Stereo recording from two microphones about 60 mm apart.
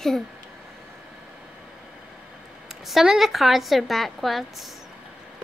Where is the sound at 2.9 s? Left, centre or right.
Centre.